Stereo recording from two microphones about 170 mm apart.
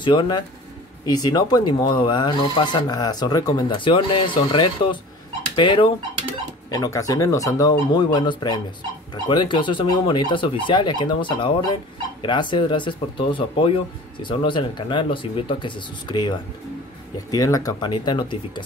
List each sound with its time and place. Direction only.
0.0 s speech: 30° left (ahead or behind)